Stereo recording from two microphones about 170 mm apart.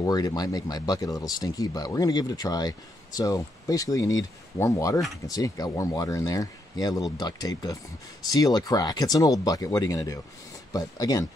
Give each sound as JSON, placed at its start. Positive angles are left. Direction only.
{"t": 0.0, "sound": "speech", "side_deg": 20}